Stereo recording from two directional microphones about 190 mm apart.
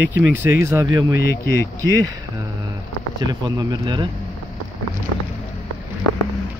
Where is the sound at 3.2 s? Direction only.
20° right (ahead or behind).